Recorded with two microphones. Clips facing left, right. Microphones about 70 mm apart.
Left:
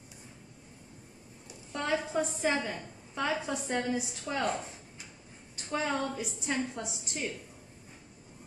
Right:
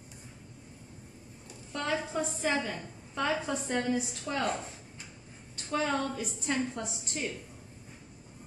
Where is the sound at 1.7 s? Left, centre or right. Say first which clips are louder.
Left 1 dB; centre.